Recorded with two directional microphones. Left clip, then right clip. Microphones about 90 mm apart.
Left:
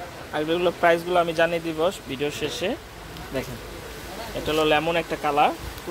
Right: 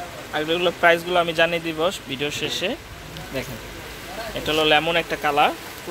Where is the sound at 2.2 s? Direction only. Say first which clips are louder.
Right 2 dB; 20° left (ahead or behind).